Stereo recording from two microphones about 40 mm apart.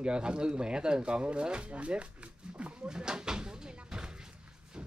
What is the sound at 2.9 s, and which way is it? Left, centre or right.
Cupboard open or close, centre.